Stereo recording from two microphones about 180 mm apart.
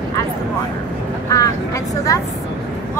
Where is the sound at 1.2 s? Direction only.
20° left (ahead or behind).